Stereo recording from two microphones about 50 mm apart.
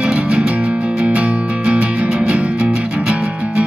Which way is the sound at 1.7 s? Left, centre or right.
Right.